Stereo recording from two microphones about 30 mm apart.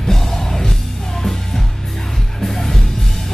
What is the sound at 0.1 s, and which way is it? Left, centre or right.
Music, centre.